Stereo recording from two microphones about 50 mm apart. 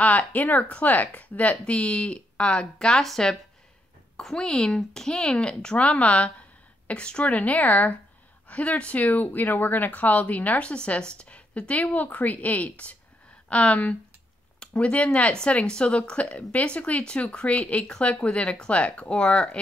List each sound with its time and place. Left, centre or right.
0.0 s a woman's voice: left
10.7 s a woman's voice: left